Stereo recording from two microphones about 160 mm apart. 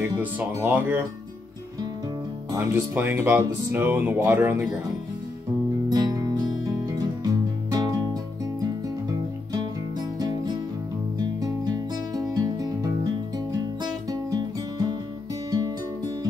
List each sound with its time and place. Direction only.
0.2 s speech: 10° right (ahead or behind)
2.5 s speech: 15° right (ahead or behind)
5.9 s music: 25° right (ahead or behind)
10.1 s music: 25° right (ahead or behind)
14.3 s music: 25° right (ahead or behind)